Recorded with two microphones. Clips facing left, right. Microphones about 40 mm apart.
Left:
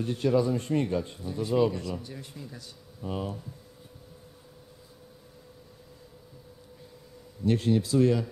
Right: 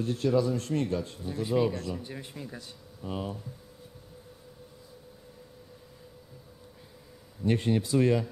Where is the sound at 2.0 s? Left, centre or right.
Right.